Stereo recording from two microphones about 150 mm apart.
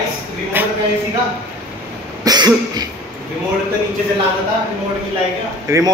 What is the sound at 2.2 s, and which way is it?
Cough, 25° right (ahead or behind).